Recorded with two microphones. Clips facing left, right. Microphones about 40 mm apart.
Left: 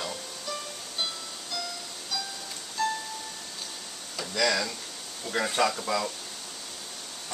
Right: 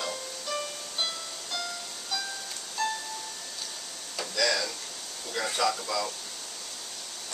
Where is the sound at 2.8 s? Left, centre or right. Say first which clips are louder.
Left 2 dB; centre.